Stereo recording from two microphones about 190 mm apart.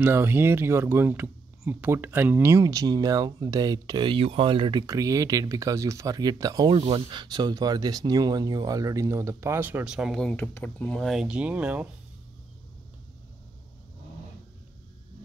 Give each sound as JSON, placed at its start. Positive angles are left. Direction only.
{"t": 0.0, "sound": "speech", "side_deg": -10}